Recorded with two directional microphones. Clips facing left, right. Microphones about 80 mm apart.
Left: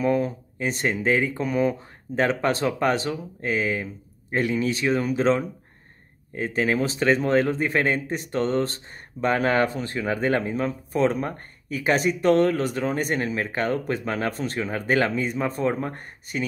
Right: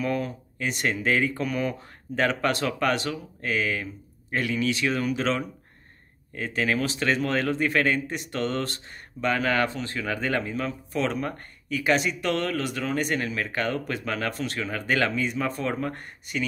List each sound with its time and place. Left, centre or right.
0.0 s speech: left